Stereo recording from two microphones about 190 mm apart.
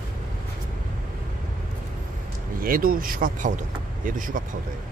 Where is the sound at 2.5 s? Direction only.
50° right (ahead or behind).